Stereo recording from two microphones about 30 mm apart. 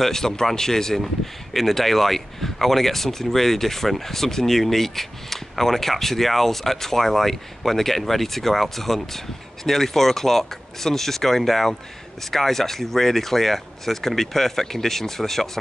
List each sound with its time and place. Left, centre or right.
0.0 s speech: centre
0.9 s speech: centre